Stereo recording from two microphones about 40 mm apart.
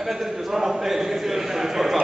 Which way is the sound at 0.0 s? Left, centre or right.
Centre.